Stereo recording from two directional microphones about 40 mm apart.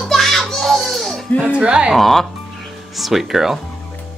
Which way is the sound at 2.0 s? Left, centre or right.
Centre.